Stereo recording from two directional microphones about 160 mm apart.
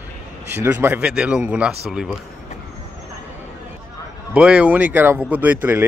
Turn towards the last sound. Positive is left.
turn(degrees=-10)  # may be behind; listen again after turning